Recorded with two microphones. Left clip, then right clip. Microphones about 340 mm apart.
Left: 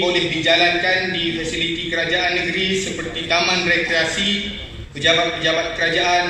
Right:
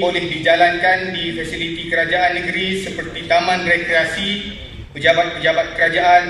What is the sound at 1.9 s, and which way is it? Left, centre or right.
A man's voice, right.